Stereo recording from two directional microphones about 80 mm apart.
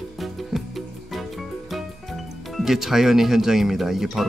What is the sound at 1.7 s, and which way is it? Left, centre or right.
Speech, centre.